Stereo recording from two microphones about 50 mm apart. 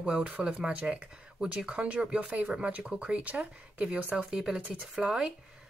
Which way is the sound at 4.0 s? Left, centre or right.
Right.